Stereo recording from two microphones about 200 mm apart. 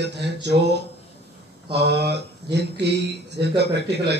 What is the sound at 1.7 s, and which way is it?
Speech, 55° right (ahead or behind).